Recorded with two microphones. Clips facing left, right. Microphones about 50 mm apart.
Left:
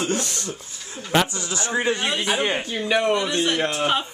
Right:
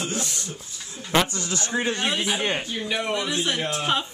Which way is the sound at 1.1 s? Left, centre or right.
Centre.